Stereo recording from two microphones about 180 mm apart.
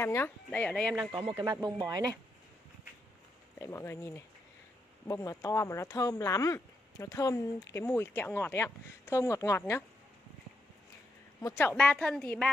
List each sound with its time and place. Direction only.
0.0 s speech: 15° left (ahead or behind)
1.3 s speech: 20° right (ahead or behind)
3.5 s speech: 15° left (ahead or behind)
11.4 s speech: 10° left (ahead or behind)